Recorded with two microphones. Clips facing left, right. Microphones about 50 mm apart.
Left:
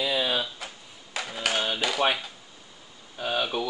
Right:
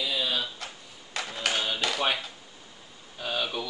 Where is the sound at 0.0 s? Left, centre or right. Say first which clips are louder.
Left 4 dB; left.